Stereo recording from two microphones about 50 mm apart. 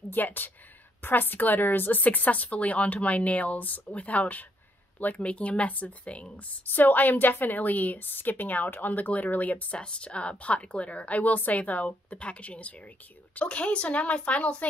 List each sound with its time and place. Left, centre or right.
0.1 s a woman's voice: left
9.8 s a woman's voice: left